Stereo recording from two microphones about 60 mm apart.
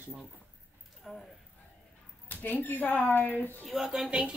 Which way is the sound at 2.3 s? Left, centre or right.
Left.